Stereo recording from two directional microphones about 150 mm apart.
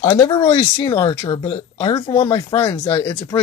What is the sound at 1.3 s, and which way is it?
Speech, 40° left (ahead or behind).